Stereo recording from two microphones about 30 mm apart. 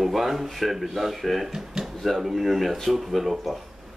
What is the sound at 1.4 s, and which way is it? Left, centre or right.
Speech, centre.